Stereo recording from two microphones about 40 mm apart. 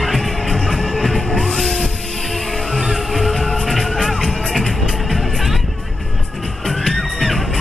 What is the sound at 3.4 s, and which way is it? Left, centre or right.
Music, centre.